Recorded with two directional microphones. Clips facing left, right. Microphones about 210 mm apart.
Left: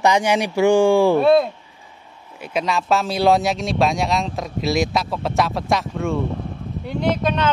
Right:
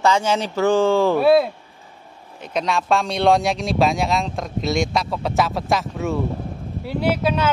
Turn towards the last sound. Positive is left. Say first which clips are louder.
# even
turn(degrees=-10)  # may be behind; listen again after turning